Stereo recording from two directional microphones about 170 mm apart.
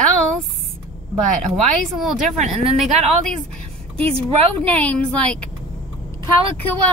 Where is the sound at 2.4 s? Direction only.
40° right (ahead or behind).